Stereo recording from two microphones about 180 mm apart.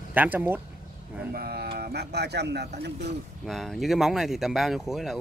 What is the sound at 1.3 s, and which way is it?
Speech, 60° right (ahead or behind).